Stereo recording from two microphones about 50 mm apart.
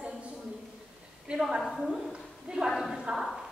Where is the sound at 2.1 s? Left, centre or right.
Centre.